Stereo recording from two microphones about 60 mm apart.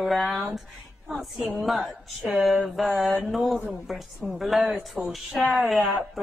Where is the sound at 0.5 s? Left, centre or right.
Centre.